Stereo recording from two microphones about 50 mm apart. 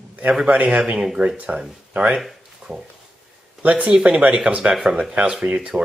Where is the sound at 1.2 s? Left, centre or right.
Right.